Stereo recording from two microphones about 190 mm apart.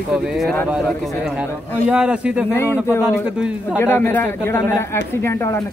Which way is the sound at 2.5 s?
10° left (ahead or behind).